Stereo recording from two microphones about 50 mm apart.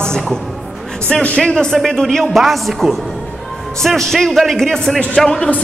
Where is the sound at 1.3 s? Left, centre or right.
Centre.